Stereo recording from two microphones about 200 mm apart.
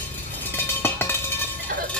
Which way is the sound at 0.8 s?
10° left (ahead or behind).